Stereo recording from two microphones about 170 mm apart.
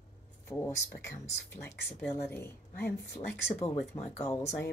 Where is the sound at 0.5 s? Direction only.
15° left (ahead or behind).